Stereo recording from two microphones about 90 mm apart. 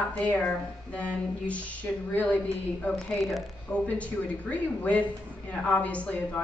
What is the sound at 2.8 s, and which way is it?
A woman's voice, 5° left (ahead or behind).